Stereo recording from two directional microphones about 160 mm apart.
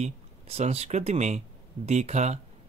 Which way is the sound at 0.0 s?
40° right (ahead or behind).